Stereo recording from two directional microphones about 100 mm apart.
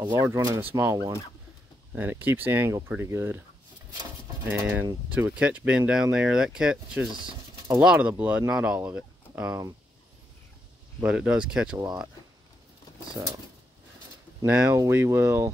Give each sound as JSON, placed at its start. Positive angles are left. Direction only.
{"t": 0.2, "sound": "speech", "side_deg": -35}
{"t": 0.6, "sound": "speech", "side_deg": -20}
{"t": 2.0, "sound": "speech", "side_deg": -20}
{"t": 4.5, "sound": "speech", "side_deg": -20}
{"t": 11.0, "sound": "speech", "side_deg": -10}
{"t": 14.4, "sound": "speech", "side_deg": -20}